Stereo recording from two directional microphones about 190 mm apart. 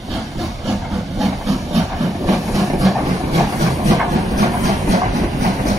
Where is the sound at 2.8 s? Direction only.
Centre (ahead or behind).